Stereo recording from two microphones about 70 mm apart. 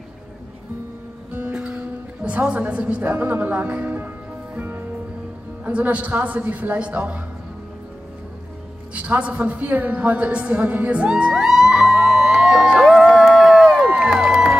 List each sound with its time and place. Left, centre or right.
1.3 s music: centre
2.2 s a woman's voice: centre
4.6 s music: right
5.7 s a woman's voice: centre
8.9 s a woman's voice: centre
12.8 s music: centre
13.2 s a sound: centre
13.8 s music: centre